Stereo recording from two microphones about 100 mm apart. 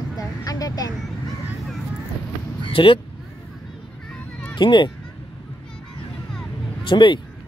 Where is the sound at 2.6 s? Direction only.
60° left (ahead or behind).